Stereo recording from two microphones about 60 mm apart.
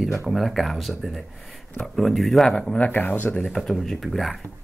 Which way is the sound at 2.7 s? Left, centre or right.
Left.